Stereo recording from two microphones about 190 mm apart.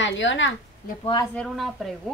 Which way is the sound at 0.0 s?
75° left (ahead or behind).